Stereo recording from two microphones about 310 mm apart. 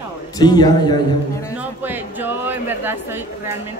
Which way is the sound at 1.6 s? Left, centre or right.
Centre.